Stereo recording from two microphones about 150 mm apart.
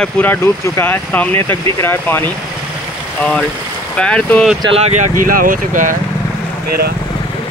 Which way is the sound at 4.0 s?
5° left (ahead or behind).